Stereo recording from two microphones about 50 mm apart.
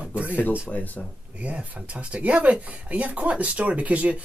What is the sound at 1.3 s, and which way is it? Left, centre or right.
Speech, right.